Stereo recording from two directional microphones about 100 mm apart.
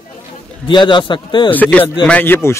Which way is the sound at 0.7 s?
50° left (ahead or behind).